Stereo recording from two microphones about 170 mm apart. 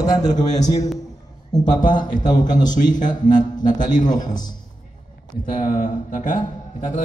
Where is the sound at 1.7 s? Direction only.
50° left (ahead or behind).